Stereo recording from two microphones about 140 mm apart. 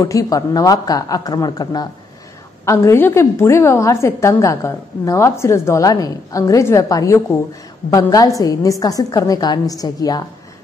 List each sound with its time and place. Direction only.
0.0 s a woman's voice: 25° left (ahead or behind)